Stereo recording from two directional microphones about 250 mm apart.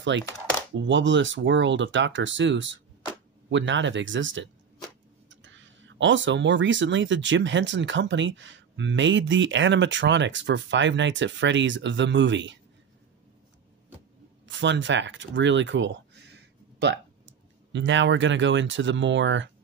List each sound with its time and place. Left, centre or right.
0.1 s speech: right
14.5 s speech: right
17.7 s speech: right